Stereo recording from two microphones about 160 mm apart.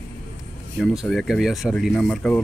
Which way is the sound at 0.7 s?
5° left (ahead or behind).